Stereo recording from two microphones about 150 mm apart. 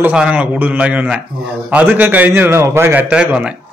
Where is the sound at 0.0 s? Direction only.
10° right (ahead or behind).